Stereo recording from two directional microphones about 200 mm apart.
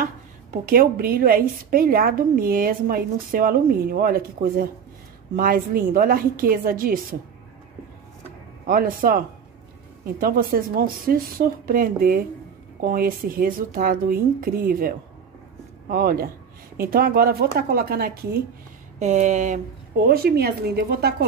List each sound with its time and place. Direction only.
0.0 s a woman's voice: 45° right (ahead or behind)
8.6 s a woman's voice: 45° right (ahead or behind)
18.9 s speech: 35° right (ahead or behind)
20.1 s a woman's voice: 50° right (ahead or behind)